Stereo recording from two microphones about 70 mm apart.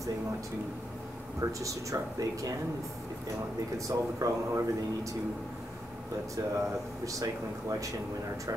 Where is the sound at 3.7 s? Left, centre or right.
Right.